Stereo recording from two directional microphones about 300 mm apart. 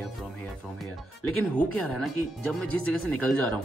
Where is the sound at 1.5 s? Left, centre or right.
Centre.